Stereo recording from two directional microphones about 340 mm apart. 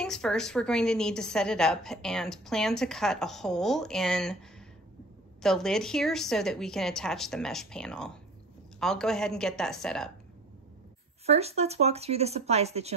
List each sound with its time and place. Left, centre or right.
0.0 s a woman's voice: centre
5.4 s a woman's voice: centre
11.2 s speech: centre